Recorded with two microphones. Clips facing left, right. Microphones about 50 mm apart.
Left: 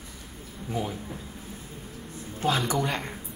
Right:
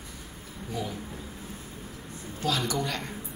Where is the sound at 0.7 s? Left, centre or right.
Left.